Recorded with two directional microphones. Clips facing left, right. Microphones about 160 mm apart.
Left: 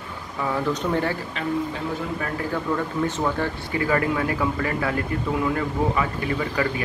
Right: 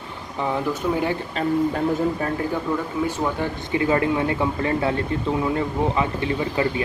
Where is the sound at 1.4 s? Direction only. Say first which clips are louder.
Right 7 dB; 40° right (ahead or behind).